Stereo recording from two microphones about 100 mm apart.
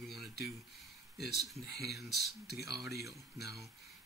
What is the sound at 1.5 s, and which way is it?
Speech, centre (ahead or behind).